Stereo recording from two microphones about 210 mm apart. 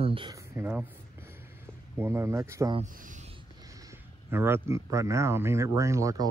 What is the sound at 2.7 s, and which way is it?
Speech, 35° right (ahead or behind).